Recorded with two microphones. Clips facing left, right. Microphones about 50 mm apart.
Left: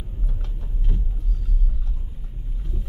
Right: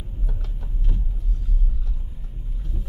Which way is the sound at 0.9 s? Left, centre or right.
Centre.